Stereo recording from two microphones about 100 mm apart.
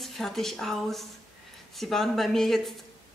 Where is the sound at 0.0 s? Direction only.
5° left (ahead or behind).